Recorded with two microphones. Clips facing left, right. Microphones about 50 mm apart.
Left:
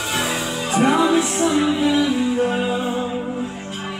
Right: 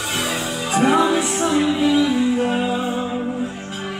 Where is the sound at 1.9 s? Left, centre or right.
Centre.